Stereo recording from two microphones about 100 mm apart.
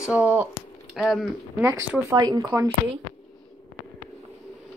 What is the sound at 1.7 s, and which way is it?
Speech, 30° right (ahead or behind).